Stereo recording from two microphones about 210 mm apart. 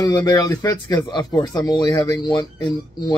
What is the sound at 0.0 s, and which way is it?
Speech, 20° left (ahead or behind).